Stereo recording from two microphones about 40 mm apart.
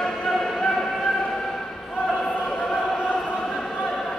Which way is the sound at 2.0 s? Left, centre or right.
Centre.